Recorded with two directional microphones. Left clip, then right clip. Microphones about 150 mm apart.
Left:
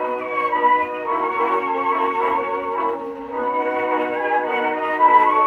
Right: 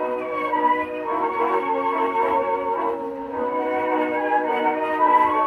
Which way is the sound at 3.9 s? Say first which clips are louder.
Left 1 dB; centre (ahead or behind).